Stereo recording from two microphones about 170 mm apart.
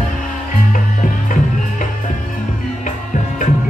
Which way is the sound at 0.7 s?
50° left (ahead or behind).